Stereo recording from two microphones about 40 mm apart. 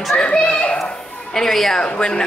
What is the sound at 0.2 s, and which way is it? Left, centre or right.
Children playing, left.